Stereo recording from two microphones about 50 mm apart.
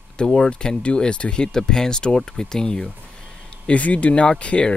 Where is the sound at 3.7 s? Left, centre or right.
Left.